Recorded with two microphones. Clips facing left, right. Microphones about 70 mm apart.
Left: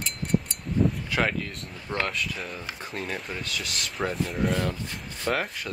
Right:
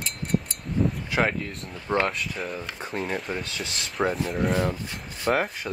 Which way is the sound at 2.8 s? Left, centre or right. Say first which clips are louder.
Right 4 dB; centre.